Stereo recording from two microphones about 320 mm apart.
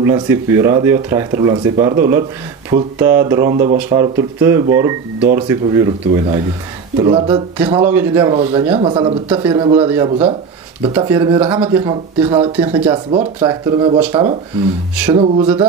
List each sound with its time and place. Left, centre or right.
0.0 s speech: centre
8.4 s speech: centre